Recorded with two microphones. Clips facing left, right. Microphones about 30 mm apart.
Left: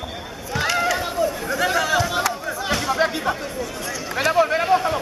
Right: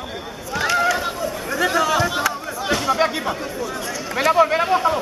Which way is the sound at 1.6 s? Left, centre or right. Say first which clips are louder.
Right 2 dB; centre.